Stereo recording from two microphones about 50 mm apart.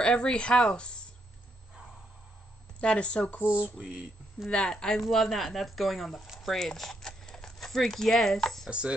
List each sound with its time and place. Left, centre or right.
0.0 s speech: centre
2.8 s speech: left
4.5 s speech: centre
6.2 s speech: centre
6.5 s speech: centre
8.6 s speech: right